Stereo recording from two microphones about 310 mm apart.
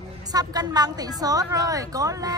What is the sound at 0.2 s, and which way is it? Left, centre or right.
A woman's voice, centre.